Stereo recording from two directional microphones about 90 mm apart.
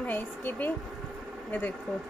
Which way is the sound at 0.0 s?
20° left (ahead or behind).